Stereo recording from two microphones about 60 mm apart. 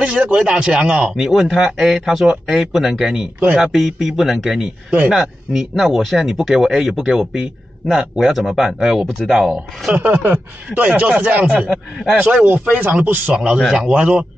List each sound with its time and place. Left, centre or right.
0.0 s speech: centre
9.9 s speech: right
11.7 s speech: centre
12.2 s speech: right
13.3 s speech: centre